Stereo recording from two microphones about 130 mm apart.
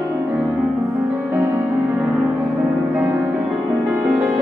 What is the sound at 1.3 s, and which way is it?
Music, 20° right (ahead or behind).